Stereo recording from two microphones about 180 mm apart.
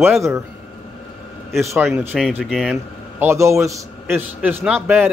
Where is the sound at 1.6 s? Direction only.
15° right (ahead or behind).